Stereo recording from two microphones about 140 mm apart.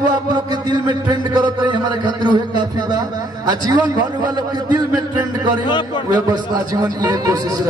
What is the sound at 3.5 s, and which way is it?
A man's voice, 30° right (ahead or behind).